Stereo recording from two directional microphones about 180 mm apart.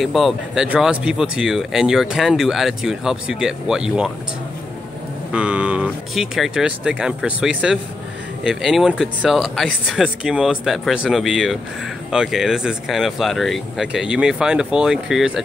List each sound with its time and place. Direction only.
0.0 s speech: centre (ahead or behind)
5.3 s speech: 5° right (ahead or behind)